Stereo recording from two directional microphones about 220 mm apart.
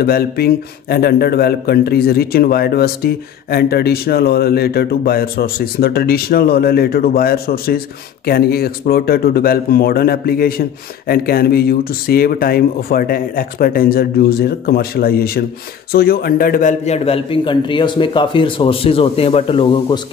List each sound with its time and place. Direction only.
0.0 s a man's voice: 45° left (ahead or behind); by 20.0 s 20° left (ahead or behind)